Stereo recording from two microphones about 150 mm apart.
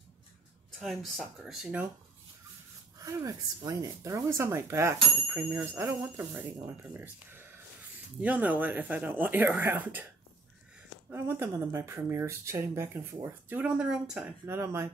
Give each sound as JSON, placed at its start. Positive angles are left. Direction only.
{"t": 0.7, "sound": "speech", "side_deg": 0}
{"t": 3.1, "sound": "speech", "side_deg": -20}
{"t": 11.1, "sound": "speech", "side_deg": -15}